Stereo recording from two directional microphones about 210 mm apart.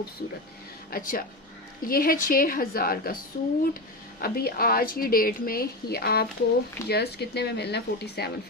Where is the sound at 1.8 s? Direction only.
45° left (ahead or behind).